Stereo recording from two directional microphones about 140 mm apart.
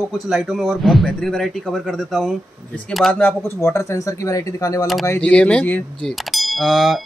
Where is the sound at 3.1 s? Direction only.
10° left (ahead or behind).